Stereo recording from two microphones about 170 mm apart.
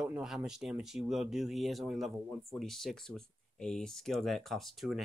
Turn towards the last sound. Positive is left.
turn(degrees=0)  # may be behind; listen again after turning